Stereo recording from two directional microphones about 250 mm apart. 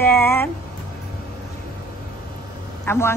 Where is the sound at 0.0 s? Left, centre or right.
Centre.